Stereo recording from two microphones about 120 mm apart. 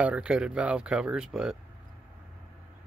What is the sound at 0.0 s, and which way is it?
Speech, 10° right (ahead or behind).